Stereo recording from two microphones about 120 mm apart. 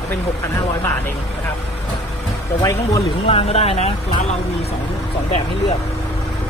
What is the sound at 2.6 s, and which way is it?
Speech, 30° left (ahead or behind).